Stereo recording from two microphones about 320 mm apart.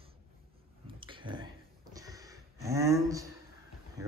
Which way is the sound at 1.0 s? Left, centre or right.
Centre.